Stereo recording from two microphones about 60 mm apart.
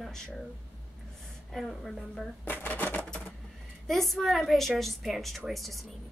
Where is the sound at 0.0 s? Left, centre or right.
Centre.